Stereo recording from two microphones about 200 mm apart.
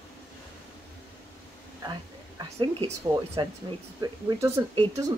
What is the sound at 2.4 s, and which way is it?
Speech, 30° right (ahead or behind).